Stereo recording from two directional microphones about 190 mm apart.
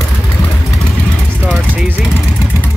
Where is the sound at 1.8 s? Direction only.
10° right (ahead or behind).